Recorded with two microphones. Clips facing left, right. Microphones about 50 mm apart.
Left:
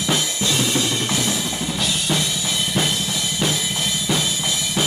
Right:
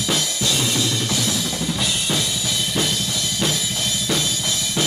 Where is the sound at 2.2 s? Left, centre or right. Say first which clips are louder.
Left 1 dB; left.